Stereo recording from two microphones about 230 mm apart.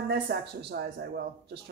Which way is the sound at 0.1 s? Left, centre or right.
Right.